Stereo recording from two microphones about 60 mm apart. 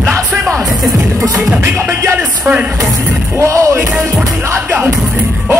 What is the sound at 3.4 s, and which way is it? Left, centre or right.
Music, right.